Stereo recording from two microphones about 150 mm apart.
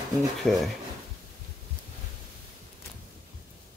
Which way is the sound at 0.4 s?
Centre (ahead or behind).